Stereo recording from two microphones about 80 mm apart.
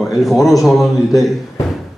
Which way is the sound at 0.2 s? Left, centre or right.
Centre.